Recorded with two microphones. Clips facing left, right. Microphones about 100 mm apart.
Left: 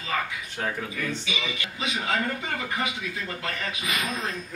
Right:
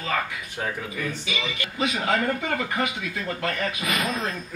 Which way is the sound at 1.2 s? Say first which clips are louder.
Right 2 dB; 50° right (ahead or behind).